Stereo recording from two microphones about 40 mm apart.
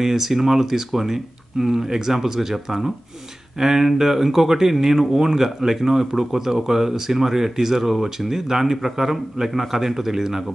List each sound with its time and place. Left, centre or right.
0.0 s speech: centre